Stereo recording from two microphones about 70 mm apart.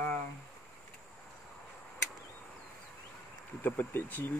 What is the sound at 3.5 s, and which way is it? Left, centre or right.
Speech, left.